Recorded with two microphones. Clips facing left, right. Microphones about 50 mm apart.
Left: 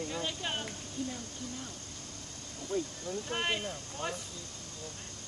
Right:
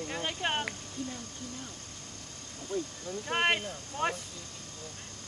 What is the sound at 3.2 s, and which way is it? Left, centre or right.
Speech, right.